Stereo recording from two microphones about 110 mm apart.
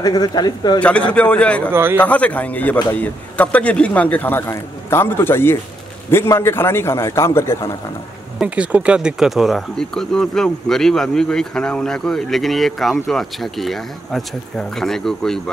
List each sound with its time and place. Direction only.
0.0 s speech: 35° left (ahead or behind)
0.7 s a man's voice: 10° left (ahead or behind)
1.7 s speech: 20° right (ahead or behind)
2.0 s a man's voice: 10° left (ahead or behind)
8.4 s speech: 10° right (ahead or behind); by 15.5 s 5° left (ahead or behind)